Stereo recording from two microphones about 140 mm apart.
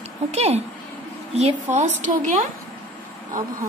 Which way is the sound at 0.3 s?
50° right (ahead or behind).